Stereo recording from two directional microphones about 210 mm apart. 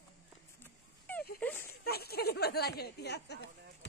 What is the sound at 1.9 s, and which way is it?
Speech, 50° left (ahead or behind).